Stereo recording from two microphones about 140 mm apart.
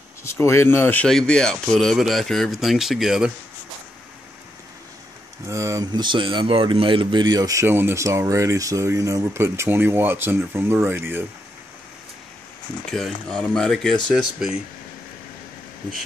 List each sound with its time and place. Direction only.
0.2 s speech: 20° left (ahead or behind)
1.0 s speech: 5° left (ahead or behind)
5.5 s speech: 20° right (ahead or behind)
12.9 s speech: 5° left (ahead or behind)